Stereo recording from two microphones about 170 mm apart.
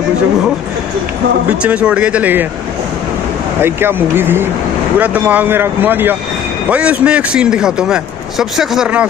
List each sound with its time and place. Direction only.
1.6 s speech: 5° right (ahead or behind)
3.6 s a man's voice: 15° right (ahead or behind)